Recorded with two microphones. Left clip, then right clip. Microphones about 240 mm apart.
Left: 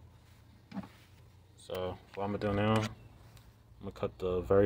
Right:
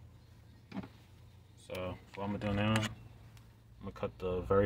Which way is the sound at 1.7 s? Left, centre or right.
Left.